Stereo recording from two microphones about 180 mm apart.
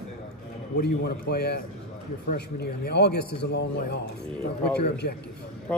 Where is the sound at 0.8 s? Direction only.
65° left (ahead or behind).